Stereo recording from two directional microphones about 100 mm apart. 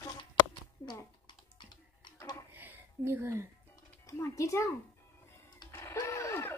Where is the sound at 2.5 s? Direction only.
20° right (ahead or behind).